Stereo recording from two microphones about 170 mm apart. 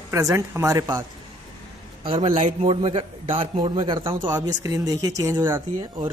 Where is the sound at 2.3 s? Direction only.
45° right (ahead or behind).